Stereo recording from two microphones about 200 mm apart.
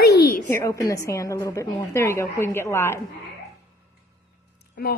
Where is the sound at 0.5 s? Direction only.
15° left (ahead or behind).